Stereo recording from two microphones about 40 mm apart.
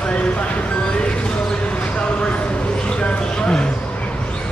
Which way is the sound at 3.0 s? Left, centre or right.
Left.